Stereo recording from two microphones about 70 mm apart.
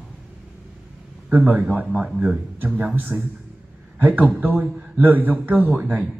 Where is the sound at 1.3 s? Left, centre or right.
Right.